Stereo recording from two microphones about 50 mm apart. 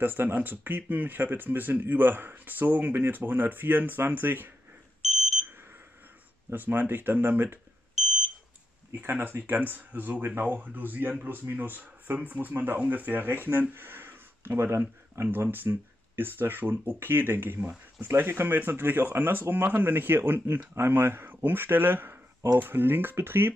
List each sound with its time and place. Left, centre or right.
0.0 s speech: right
5.0 s alarm: centre
6.5 s speech: right
8.0 s smoke detector: centre
8.9 s speech: right